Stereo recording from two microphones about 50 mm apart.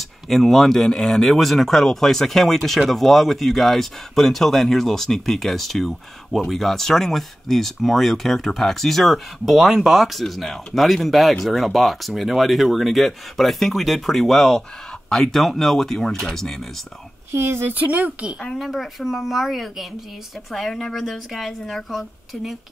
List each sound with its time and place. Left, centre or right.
0.3 s speech: centre
17.3 s speech: right
17.7 s speech: right
18.6 s speech: centre